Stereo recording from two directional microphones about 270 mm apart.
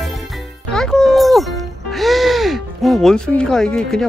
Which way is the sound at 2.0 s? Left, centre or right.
Centre.